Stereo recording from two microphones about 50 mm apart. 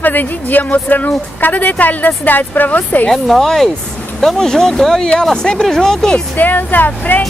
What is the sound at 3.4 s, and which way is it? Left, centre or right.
Speech, centre.